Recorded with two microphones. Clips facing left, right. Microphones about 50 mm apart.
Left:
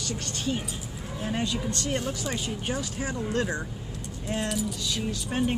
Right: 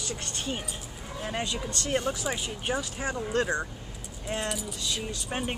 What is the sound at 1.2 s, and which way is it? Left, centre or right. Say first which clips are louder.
Speech: left 2 dB; centre.